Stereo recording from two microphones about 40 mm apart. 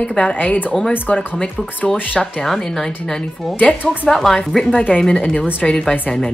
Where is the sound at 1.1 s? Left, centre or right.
Left.